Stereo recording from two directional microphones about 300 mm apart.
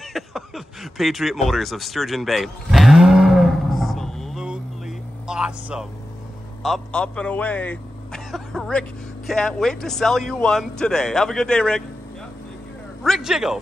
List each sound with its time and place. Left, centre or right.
0.1 s a sound: centre
6.6 s a man's voice: centre
13.0 s speech: centre